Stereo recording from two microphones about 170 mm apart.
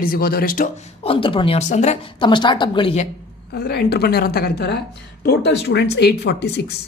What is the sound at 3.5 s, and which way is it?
Speech, 70° left (ahead or behind).